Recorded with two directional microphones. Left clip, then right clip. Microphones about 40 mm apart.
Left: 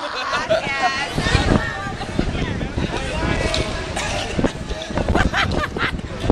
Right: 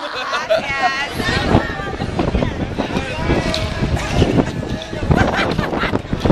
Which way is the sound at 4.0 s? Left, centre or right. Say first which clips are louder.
Right 5 dB; left.